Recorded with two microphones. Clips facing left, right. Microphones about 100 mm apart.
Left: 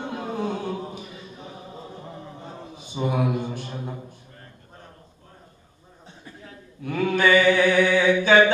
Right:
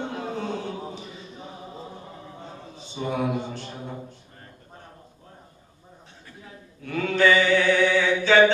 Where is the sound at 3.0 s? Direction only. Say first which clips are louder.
Left 4 dB; 25° left (ahead or behind).